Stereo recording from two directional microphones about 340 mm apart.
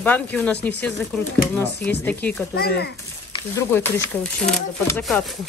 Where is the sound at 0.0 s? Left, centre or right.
Centre.